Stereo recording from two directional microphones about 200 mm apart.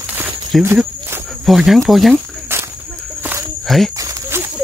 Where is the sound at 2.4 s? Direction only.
10° right (ahead or behind).